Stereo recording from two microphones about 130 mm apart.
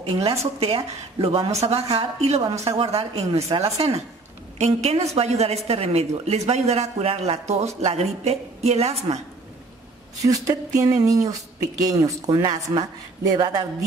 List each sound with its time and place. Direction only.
0.2 s a woman's voice: 50° right (ahead or behind)
10.1 s speech: 25° right (ahead or behind)